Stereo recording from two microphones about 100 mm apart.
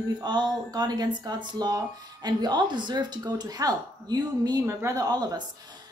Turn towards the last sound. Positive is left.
turn(degrees=-40)  # may be behind; listen again after turning